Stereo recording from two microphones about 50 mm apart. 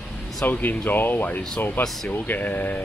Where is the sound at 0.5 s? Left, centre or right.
Left.